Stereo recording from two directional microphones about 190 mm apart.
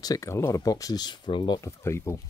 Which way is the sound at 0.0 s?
15° left (ahead or behind).